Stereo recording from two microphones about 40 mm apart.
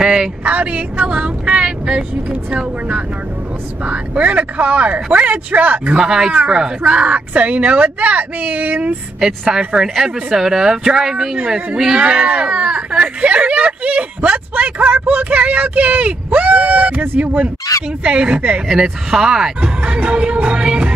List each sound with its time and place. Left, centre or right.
0.0 s speech: centre
0.4 s speech: right
3.8 s speech: right
5.9 s speech: centre; by 8.9 s right
9.5 s speech: right
18.0 s speech: right
18.7 s speech: centre
19.6 s speech: right
20.4 s music: right